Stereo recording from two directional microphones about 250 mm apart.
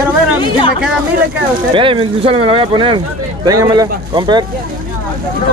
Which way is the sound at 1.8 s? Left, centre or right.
Right.